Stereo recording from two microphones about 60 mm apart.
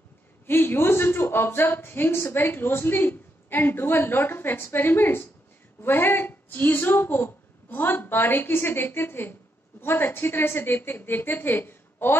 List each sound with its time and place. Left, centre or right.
0.5 s a woman's voice: left